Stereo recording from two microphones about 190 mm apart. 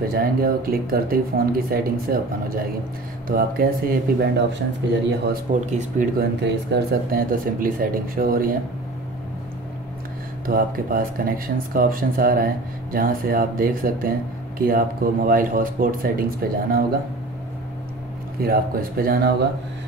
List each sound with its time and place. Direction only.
0.1 s speech: 50° right (ahead or behind)
5.3 s speech: 40° right (ahead or behind)
6.4 s speech: 65° right (ahead or behind)
10.4 s speech: 50° right (ahead or behind)
18.4 s speech: 50° right (ahead or behind)